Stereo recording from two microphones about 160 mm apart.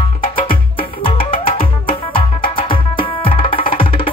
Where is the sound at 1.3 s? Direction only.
35° left (ahead or behind).